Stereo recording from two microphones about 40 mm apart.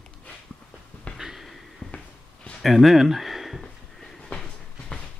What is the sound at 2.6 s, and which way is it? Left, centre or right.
Speech, centre.